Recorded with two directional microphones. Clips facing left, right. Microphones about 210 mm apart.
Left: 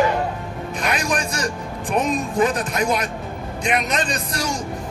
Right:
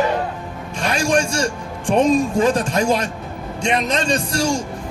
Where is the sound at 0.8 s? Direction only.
30° right (ahead or behind).